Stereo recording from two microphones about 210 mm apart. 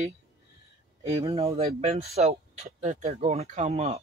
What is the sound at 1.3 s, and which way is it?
Speech, 30° right (ahead or behind).